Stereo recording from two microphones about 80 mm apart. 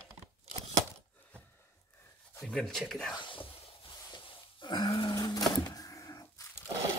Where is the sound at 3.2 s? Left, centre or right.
Left.